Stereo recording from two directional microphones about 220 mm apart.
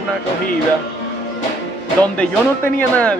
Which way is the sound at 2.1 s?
5° left (ahead or behind).